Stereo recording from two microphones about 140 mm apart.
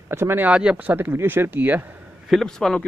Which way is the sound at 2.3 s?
5° left (ahead or behind).